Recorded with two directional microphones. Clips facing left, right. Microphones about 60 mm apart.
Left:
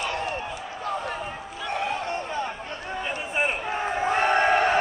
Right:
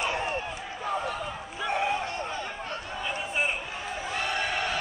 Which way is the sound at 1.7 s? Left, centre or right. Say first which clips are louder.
Even; centre.